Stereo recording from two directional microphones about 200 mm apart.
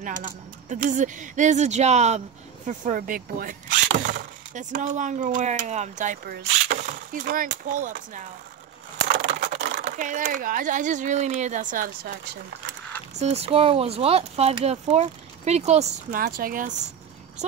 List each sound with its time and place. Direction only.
0.0 s speech: 40° right (ahead or behind)
9.0 s bird: 35° right (ahead or behind)
9.9 s speech: 40° right (ahead or behind)
13.2 s speech: 30° right (ahead or behind)